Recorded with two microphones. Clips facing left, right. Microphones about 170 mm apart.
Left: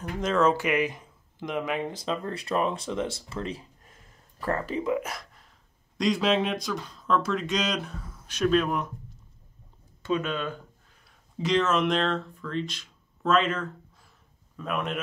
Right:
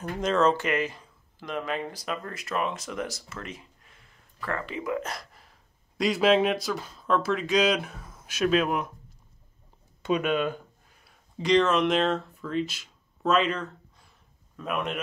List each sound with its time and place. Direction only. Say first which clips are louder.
0.0 s speech: even; 5° left (ahead or behind); by 4.8 s 35° left (ahead or behind)
5.0 s a sound: right 1 dB; centre (ahead or behind)
5.9 s speech: right 2 dB; 5° right (ahead or behind)
10.0 s speech: right 3 dB; 15° right (ahead or behind)
11.3 s speech: right 2 dB; 5° left (ahead or behind)